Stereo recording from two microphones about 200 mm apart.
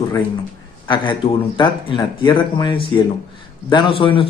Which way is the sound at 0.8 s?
25° left (ahead or behind).